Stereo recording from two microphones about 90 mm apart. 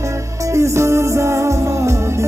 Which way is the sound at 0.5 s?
35° right (ahead or behind).